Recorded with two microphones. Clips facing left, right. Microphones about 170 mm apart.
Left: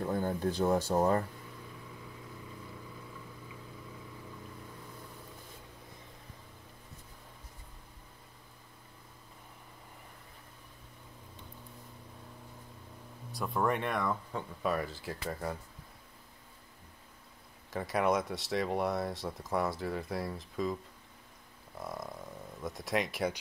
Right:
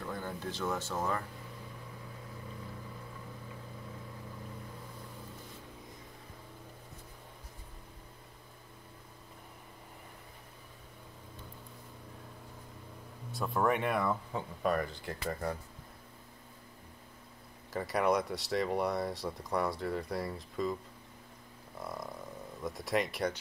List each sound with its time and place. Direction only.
0.0 s speech: 40° left (ahead or behind)
13.3 s speech: centre (ahead or behind)
17.6 s speech: centre (ahead or behind)
21.7 s speech: centre (ahead or behind)